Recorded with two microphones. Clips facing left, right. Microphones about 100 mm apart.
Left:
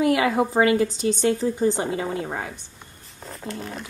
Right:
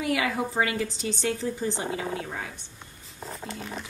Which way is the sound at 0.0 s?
40° left (ahead or behind).